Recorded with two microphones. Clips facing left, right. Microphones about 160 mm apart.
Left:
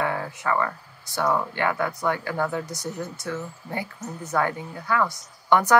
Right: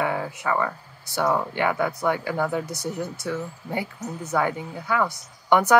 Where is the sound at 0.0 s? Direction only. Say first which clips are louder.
Right 1 dB; 15° right (ahead or behind).